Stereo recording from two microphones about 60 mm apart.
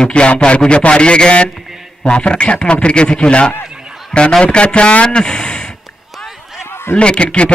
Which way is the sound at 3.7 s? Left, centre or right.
Centre.